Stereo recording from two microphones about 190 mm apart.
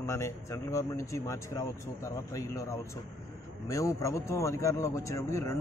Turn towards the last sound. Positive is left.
turn(degrees=15)  # may be behind; listen again after turning